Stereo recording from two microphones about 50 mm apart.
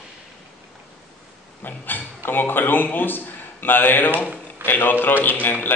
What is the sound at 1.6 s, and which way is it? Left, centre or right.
A man's voice, left.